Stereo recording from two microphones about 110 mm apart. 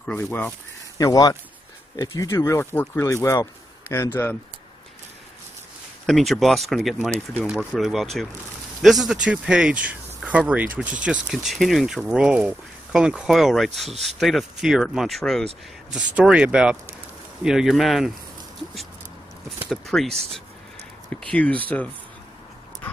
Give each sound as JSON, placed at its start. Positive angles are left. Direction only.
{"t": 0.0, "sound": "speech", "side_deg": 15}
{"t": 0.9, "sound": "speech", "side_deg": 35}
{"t": 6.0, "sound": "speech", "side_deg": 0}
{"t": 15.9, "sound": "speech", "side_deg": -10}
{"t": 19.7, "sound": "speech", "side_deg": 5}
{"t": 21.2, "sound": "speech", "side_deg": 10}